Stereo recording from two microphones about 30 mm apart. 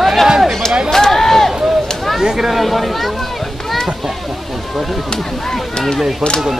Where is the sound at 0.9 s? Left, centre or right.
Centre.